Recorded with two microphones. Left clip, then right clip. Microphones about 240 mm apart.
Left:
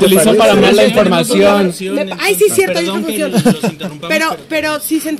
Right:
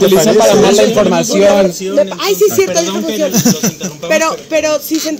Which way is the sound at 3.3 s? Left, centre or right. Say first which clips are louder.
Even; centre.